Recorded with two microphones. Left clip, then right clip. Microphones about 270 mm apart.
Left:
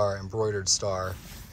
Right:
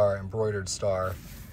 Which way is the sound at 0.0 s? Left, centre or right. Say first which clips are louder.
Right 2 dB; centre.